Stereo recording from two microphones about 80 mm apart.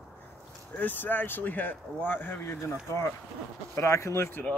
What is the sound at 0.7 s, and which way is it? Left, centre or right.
Speech, left.